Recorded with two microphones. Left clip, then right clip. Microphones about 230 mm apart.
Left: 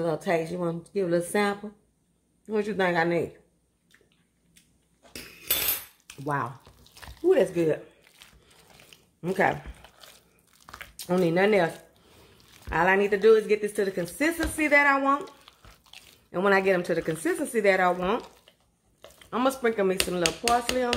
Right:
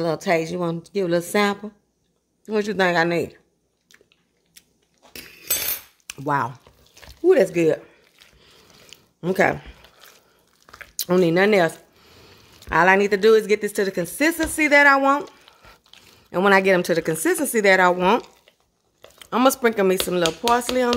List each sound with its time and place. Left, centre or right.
0.0 s speech: right
6.0 s speech: right
8.2 s wild animals: centre
8.9 s a sound: right
10.6 s squish: centre
11.0 s speech: right
16.3 s speech: right